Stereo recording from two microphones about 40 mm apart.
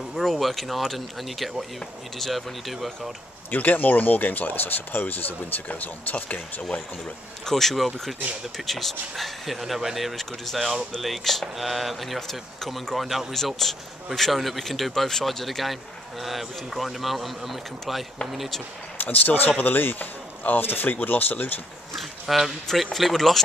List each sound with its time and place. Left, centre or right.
0.1 s speech: centre
3.4 s speech: left
7.4 s speech: centre
10.1 s speech: centre
12.2 s speech: centre
15.4 s speech: centre
18.9 s speech: left
21.9 s speech: centre